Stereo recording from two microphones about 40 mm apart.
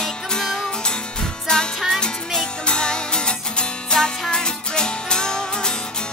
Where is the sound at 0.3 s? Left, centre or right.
Centre.